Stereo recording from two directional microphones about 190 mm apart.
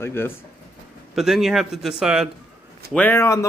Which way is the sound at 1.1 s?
Centre (ahead or behind).